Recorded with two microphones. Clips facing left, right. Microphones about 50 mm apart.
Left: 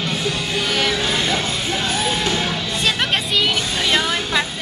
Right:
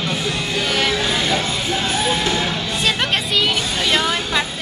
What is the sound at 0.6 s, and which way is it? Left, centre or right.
Music, centre.